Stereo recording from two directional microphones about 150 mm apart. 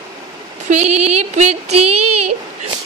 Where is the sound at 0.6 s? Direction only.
50° right (ahead or behind).